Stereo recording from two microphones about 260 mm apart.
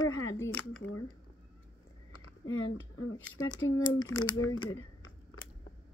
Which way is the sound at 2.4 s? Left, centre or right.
Left.